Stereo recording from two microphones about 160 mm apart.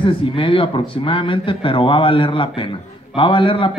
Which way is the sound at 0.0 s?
35° left (ahead or behind).